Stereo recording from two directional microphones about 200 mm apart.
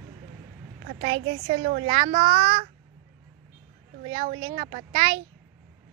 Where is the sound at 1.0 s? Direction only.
30° right (ahead or behind).